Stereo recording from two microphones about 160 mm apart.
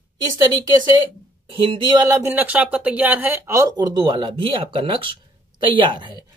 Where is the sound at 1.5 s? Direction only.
30° right (ahead or behind).